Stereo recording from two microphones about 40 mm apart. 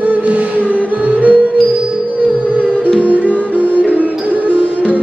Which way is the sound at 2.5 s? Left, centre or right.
Right.